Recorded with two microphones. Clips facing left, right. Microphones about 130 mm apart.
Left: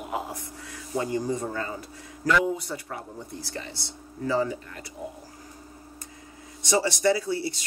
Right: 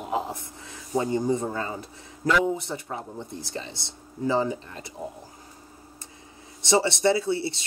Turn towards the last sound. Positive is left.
turn(degrees=-25)  # may be behind; listen again after turning